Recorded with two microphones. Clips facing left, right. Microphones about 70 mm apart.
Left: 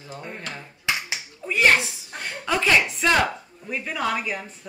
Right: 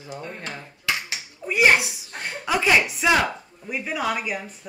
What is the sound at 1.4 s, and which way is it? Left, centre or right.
Speech, centre.